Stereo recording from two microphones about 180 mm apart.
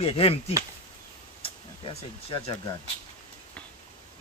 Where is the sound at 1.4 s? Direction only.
30° left (ahead or behind).